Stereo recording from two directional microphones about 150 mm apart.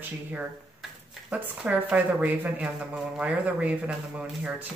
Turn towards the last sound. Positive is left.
turn(degrees=-10)  # may be behind; listen again after turning